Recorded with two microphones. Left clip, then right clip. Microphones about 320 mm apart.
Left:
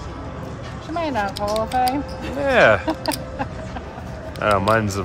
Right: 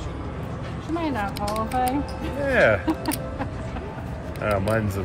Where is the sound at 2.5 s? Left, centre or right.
Centre.